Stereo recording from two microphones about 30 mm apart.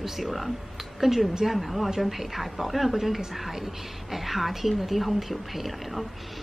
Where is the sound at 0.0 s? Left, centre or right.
Centre.